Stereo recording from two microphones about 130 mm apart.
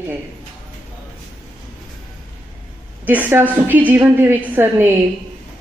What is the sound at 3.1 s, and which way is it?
A woman's voice, 15° right (ahead or behind).